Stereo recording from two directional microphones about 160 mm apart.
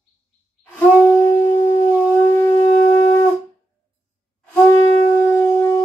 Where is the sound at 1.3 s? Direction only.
30° left (ahead or behind).